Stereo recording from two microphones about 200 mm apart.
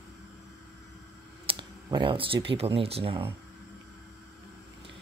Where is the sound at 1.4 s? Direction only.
25° right (ahead or behind).